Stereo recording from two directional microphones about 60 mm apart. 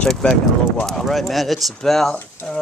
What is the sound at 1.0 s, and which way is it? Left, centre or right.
Speech, centre.